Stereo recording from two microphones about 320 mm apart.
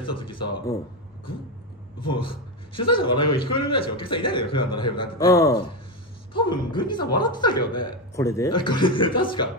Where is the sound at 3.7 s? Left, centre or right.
Centre.